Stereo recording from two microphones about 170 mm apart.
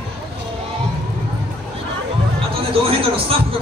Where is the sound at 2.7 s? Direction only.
35° right (ahead or behind).